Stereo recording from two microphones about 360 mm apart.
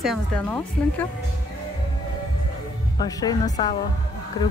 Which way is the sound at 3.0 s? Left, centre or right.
Centre.